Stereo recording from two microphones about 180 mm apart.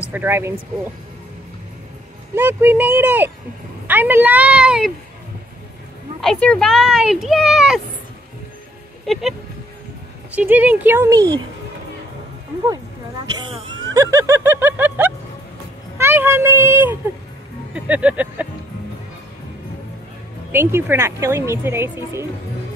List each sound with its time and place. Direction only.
0.1 s speech: 10° right (ahead or behind)
2.3 s speech: 10° right (ahead or behind)
6.2 s speech: 5° left (ahead or behind)
9.0 s speech: centre (ahead or behind)
10.3 s speech: 10° right (ahead or behind)
13.4 s speech: 25° right (ahead or behind); by 18.5 s 10° right (ahead or behind)
20.5 s speech: 10° right (ahead or behind)